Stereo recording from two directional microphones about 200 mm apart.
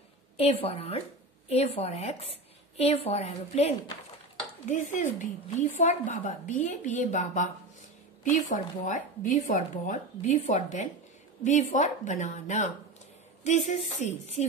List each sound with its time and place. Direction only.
0.4 s speech: 30° left (ahead or behind)
14.0 s speech: 35° left (ahead or behind)